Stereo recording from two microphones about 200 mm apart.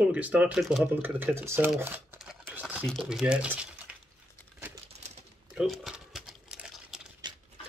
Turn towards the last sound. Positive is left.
turn(degrees=-5)  # may be behind; listen again after turning